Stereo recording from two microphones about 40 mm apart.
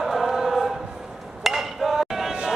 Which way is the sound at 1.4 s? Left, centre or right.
Centre.